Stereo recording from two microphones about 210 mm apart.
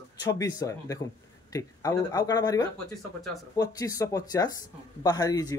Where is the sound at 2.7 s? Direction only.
Centre (ahead or behind).